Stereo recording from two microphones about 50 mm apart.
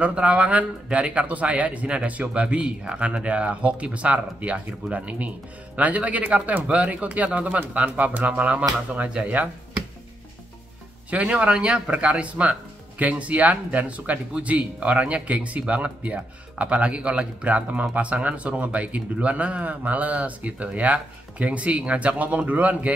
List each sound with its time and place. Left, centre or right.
0.0 s speech: right
11.1 s speech: right